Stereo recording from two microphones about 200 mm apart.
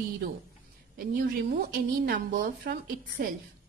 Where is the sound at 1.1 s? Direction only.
50° right (ahead or behind).